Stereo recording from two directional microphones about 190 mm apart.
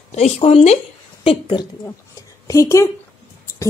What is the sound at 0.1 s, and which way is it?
Speech, 35° left (ahead or behind).